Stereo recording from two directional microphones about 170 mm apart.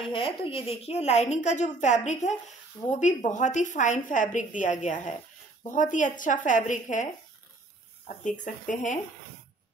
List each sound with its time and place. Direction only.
0.0 s a woman's voice: 30° left (ahead or behind); by 7.1 s 45° left (ahead or behind)
8.2 s a woman's voice: 45° left (ahead or behind)